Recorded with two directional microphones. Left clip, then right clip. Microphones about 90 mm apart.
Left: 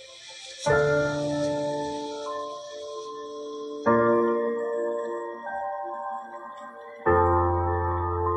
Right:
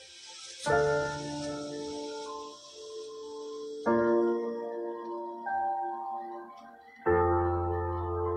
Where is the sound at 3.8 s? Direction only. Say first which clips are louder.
Left 5 dB; 25° left (ahead or behind).